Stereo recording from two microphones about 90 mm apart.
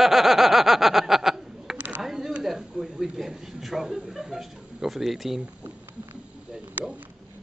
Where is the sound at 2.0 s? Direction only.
5° right (ahead or behind).